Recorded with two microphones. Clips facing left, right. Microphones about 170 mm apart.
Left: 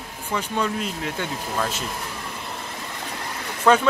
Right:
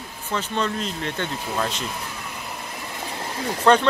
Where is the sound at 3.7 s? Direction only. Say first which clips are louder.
Right 1 dB; 5° left (ahead or behind).